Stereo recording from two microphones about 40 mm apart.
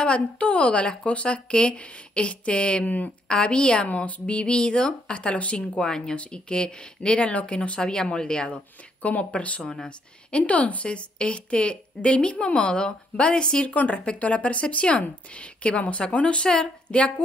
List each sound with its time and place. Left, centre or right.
0.0 s a woman's voice: left
5.6 s a woman's voice: centre
9.0 s a woman's voice: left
13.7 s a woman's voice: left